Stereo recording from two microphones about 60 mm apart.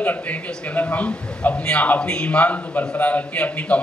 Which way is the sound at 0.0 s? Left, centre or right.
Left.